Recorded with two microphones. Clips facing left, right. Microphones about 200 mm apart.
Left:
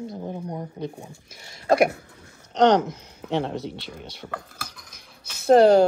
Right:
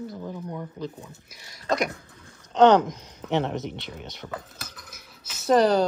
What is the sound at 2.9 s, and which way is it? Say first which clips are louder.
Speech: even; 20° right (ahead or behind).